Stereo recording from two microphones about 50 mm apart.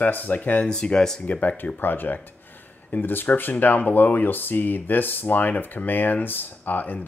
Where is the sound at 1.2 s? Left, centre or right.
Left.